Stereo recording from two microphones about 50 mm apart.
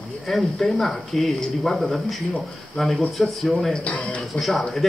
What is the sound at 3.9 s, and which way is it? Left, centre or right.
Speech, left.